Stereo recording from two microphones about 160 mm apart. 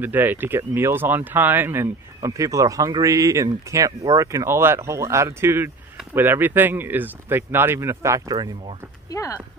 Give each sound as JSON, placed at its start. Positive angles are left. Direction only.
{"t": 0.0, "sound": "speech", "side_deg": -10}